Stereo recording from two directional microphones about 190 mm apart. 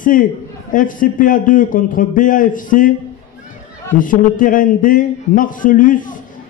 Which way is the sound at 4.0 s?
45° left (ahead or behind).